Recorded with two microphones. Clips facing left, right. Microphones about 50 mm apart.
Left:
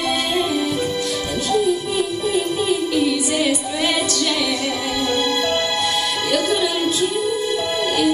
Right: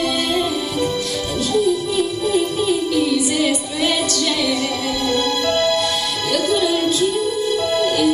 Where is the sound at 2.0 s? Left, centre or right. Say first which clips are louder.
Right 2 dB; centre.